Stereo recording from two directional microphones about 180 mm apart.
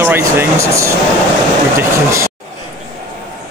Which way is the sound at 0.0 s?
10° right (ahead or behind).